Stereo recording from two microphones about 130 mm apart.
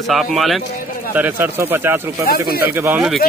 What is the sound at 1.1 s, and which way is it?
Speech, 15° right (ahead or behind).